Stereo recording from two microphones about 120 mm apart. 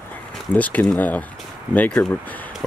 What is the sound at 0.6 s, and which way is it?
Speech, 10° left (ahead or behind).